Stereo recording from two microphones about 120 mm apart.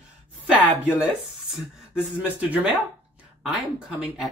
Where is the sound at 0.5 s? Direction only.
10° right (ahead or behind).